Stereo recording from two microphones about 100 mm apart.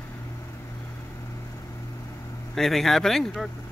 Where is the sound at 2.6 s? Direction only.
Centre (ahead or behind).